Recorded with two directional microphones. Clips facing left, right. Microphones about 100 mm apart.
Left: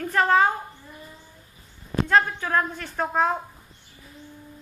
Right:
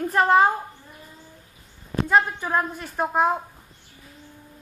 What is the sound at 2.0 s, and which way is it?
A woman's voice, 10° right (ahead or behind).